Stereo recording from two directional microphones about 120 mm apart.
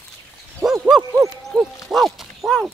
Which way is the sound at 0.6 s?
Centre (ahead or behind).